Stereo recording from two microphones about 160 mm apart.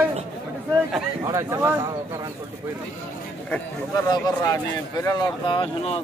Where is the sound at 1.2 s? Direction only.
20° right (ahead or behind).